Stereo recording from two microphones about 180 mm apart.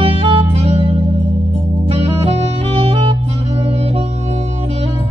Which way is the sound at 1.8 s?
35° right (ahead or behind).